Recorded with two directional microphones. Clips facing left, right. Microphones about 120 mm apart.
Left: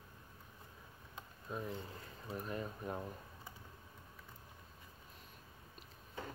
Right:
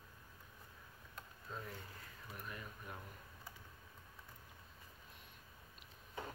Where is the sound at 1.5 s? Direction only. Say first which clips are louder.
Left 6 dB; 20° left (ahead or behind); by 3.1 s 35° left (ahead or behind).